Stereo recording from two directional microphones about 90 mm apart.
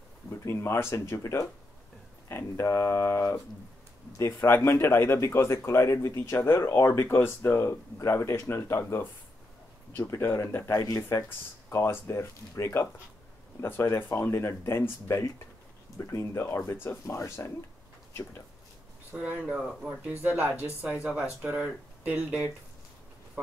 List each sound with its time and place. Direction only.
0.3 s speech: 30° left (ahead or behind)
19.1 s speech: 5° right (ahead or behind)
20.1 s speech: 20° right (ahead or behind)